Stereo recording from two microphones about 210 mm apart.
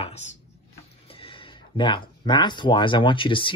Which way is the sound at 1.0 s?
25° left (ahead or behind).